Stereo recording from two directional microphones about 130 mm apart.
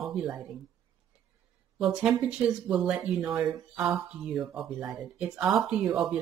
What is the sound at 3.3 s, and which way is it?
Speech, 15° right (ahead or behind).